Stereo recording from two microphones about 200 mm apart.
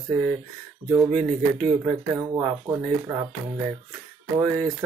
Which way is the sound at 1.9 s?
15° right (ahead or behind).